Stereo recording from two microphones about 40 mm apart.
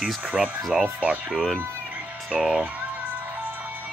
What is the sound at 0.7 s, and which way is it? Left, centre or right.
Speech, right.